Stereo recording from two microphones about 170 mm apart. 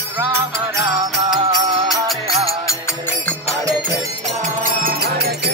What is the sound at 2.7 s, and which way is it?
Music, 15° left (ahead or behind).